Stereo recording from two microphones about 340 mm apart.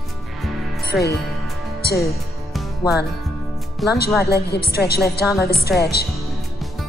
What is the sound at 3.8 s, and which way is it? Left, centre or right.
Speech, centre.